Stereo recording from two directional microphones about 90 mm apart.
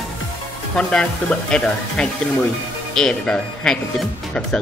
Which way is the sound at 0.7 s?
10° left (ahead or behind).